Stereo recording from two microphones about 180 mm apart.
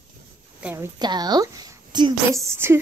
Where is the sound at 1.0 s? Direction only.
25° right (ahead or behind).